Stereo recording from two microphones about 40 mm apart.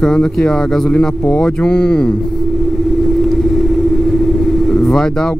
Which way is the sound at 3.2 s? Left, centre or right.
Centre.